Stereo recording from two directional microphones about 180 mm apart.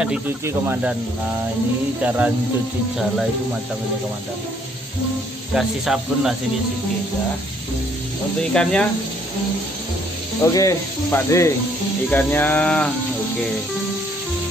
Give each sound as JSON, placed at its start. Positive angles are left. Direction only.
{"t": 0.5, "sound": "speech", "side_deg": -10}
{"t": 2.0, "sound": "speech", "side_deg": -10}
{"t": 5.5, "sound": "speech", "side_deg": 0}
{"t": 8.4, "sound": "speech", "side_deg": 5}
{"t": 10.4, "sound": "speech", "side_deg": 15}